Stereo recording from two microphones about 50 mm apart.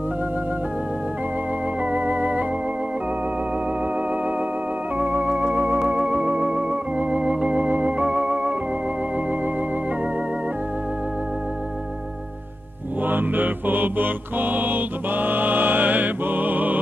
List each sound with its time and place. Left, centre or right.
1.8 s music: right
3.8 s music: right
4.9 s organ: right
8.0 s theremin: right
13.0 s mantra: right